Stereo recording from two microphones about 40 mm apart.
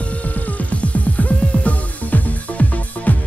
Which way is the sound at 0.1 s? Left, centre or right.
Left.